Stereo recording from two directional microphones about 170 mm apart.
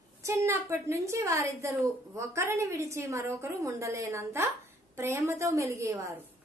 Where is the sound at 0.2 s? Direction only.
15° right (ahead or behind).